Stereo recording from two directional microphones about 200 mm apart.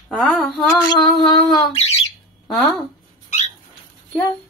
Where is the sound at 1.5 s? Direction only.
30° left (ahead or behind).